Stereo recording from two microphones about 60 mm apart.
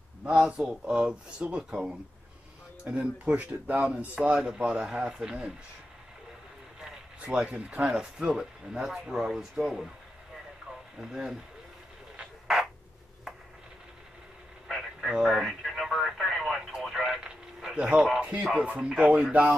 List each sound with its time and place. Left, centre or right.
0.2 s speech: centre
6.8 s speech: centre
11.0 s speech: centre
14.7 s radio: centre
17.7 s speech: right